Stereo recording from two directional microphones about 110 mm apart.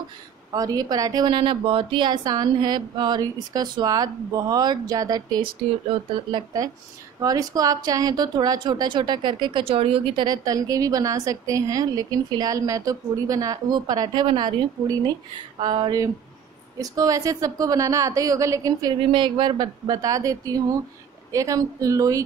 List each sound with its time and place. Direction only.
0.5 s a woman's voice: 35° right (ahead or behind); by 10.2 s 60° right (ahead or behind)
10.2 s a woman's voice: 35° right (ahead or behind)
18.9 s a woman's voice: 50° right (ahead or behind); by 22.2 s 30° right (ahead or behind)